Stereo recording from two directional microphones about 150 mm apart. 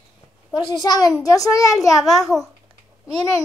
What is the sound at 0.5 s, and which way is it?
A woman's voice, 30° left (ahead or behind).